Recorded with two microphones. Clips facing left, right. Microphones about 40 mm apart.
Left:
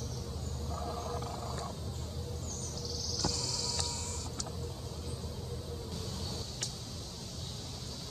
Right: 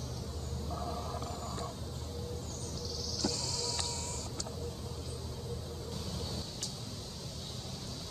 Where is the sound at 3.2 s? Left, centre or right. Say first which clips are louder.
Right 1 dB; centre.